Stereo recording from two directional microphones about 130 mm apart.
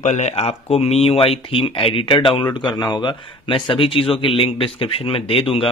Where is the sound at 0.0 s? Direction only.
65° left (ahead or behind).